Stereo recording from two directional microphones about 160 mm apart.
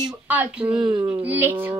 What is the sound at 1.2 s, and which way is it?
Speech, 10° right (ahead or behind).